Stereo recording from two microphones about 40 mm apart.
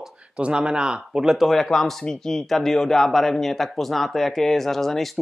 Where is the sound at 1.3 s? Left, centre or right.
Centre.